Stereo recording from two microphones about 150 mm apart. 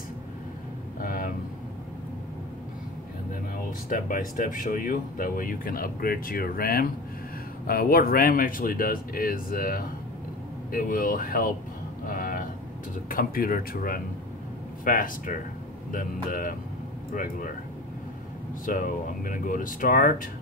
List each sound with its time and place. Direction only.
1.0 s vehicle: 65° left (ahead or behind)
3.9 s speech: 65° left (ahead or behind)
12.1 s a sound: 65° left (ahead or behind)
13.1 s speech: 75° left (ahead or behind)
18.7 s speech: 60° left (ahead or behind)